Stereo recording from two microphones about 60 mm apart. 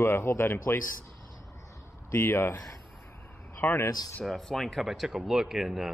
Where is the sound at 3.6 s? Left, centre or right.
Left.